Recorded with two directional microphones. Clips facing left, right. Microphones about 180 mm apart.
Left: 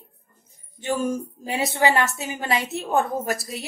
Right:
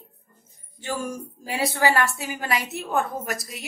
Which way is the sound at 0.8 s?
20° left (ahead or behind).